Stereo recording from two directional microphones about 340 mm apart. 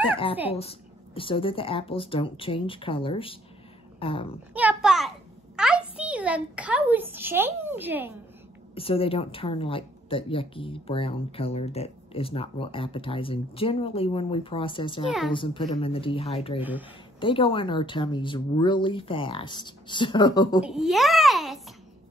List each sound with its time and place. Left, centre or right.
0.0 s a woman's voice: centre
4.6 s a sound: centre
5.6 s a child's voice: centre
8.7 s a woman's voice: centre
15.0 s a child's voice: centre
15.3 s a woman's voice: centre
20.6 s a child's voice: centre